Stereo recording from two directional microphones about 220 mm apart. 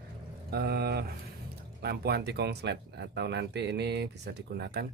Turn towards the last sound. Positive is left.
turn(degrees=-50)  # may be behind; listen again after turning